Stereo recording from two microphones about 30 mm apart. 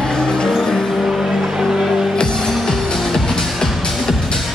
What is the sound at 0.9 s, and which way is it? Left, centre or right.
Vehicle, centre.